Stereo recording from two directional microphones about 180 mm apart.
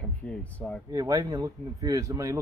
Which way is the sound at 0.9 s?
20° right (ahead or behind).